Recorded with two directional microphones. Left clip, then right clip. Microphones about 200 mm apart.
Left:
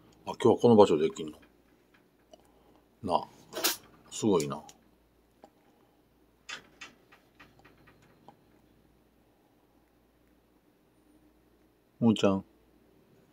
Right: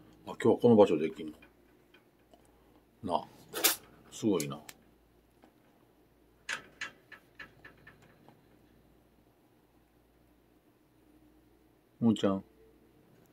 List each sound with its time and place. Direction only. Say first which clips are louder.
0.2 s speech: left 3 dB; 20° left (ahead or behind)
3.0 s a sound: left 4 dB; 15° left (ahead or behind)
4.1 s speech: left 4 dB; 25° left (ahead or behind)
12.0 s speech: left 4 dB; 20° left (ahead or behind)